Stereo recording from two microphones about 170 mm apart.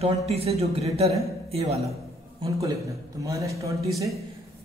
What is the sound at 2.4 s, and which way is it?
A man's voice, 20° right (ahead or behind).